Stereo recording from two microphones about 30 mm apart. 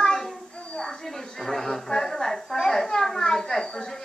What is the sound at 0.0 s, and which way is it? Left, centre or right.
Child singing, left.